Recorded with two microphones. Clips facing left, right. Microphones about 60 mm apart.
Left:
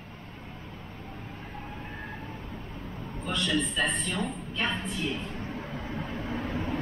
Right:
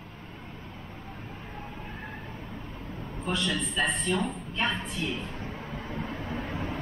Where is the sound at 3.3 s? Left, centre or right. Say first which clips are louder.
Left 1 dB; centre.